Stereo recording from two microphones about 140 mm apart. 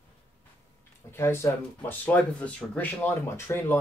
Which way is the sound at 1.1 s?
20° left (ahead or behind).